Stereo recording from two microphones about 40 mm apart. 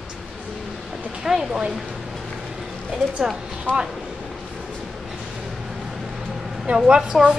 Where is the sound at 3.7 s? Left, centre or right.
Left.